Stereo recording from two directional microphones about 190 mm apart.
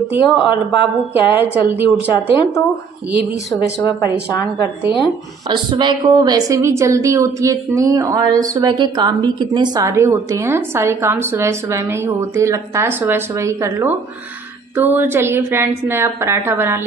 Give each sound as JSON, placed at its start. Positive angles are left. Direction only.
{"t": 0.2, "sound": "speech", "side_deg": 25}
{"t": 1.1, "sound": "a woman's voice", "side_deg": -10}
{"t": 2.1, "sound": "speech", "side_deg": 20}
{"t": 3.6, "sound": "speech", "side_deg": 20}
{"t": 5.5, "sound": "a woman's voice", "side_deg": -25}